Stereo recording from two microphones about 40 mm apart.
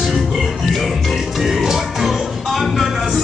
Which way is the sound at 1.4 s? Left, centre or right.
Centre.